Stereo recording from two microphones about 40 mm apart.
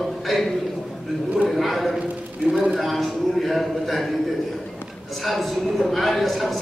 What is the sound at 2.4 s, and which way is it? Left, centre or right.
Speech, right.